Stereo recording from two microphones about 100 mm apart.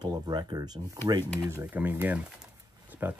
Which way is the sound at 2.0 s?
15° right (ahead or behind).